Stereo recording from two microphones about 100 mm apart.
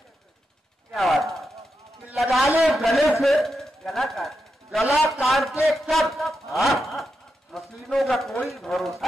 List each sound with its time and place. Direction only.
0.9 s a man's voice: centre (ahead or behind)